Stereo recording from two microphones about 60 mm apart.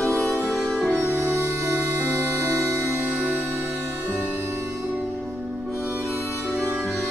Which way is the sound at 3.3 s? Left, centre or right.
Right.